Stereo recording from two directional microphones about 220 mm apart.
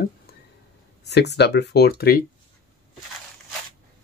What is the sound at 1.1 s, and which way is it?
Speech, 50° left (ahead or behind).